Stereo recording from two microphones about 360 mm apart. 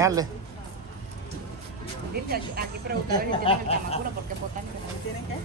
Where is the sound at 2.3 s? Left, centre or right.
Right.